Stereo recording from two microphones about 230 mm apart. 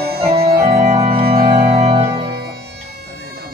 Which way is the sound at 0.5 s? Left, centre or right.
Right.